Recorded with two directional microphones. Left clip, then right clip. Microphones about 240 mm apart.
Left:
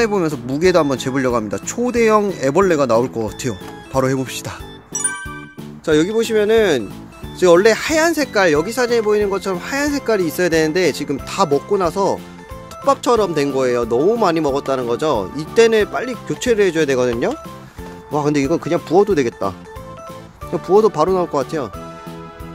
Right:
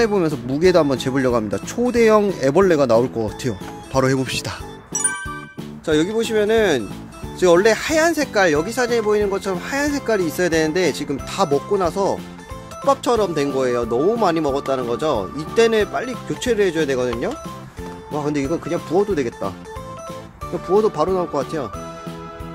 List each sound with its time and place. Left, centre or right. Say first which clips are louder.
0.0 s speech: left 1 dB; centre
5.9 s speech: left 3 dB; left
20.6 s speech: left 4 dB; left